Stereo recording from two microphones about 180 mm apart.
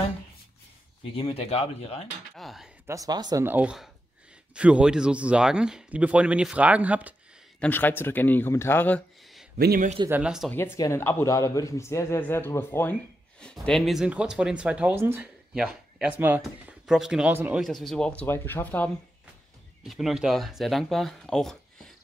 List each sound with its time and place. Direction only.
1.1 s speech: 30° left (ahead or behind)
2.3 s speech: centre (ahead or behind)
2.9 s speech: 20° right (ahead or behind)
3.4 s speech: 5° right (ahead or behind)
7.6 s a man's voice: 10° left (ahead or behind)
9.6 s a man's voice: 60° right (ahead or behind)
10.0 s speech: 5° right (ahead or behind)
10.5 s a man's voice: 15° left (ahead or behind)
19.9 s speech: centre (ahead or behind)